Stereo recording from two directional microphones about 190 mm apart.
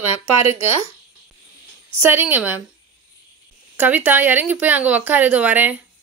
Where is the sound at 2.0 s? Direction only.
10° right (ahead or behind).